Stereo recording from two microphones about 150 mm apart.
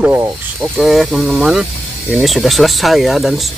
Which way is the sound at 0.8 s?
Centre (ahead or behind).